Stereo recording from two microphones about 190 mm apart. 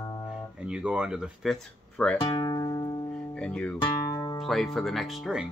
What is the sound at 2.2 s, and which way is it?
Speech, 25° left (ahead or behind).